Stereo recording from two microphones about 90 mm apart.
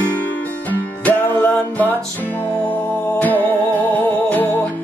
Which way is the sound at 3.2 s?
20° left (ahead or behind).